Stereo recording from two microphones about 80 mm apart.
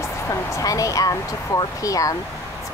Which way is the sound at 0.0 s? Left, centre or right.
Left.